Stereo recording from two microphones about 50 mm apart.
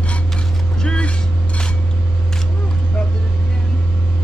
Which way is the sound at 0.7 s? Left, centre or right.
Left.